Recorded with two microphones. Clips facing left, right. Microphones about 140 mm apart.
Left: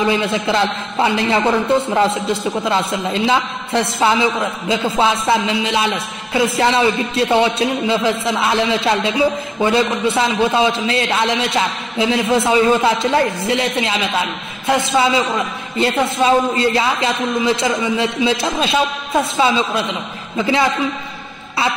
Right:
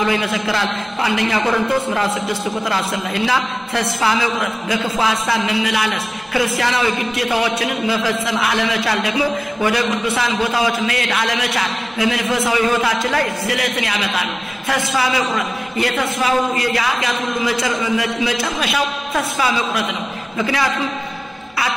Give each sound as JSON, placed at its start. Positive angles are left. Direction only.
{"t": 0.1, "sound": "a man's voice", "side_deg": 25}